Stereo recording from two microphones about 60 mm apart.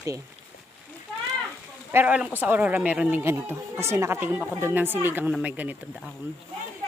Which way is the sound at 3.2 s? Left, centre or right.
Right.